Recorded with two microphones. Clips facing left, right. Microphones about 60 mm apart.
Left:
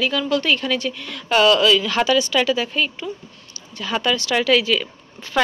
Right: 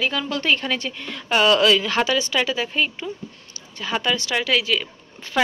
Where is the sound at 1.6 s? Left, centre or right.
Right; by 4.3 s centre.